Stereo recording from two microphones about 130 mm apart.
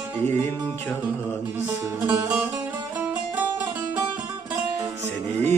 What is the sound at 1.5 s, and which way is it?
Speech, 20° right (ahead or behind).